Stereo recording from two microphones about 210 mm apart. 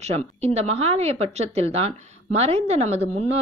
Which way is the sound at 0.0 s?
30° right (ahead or behind).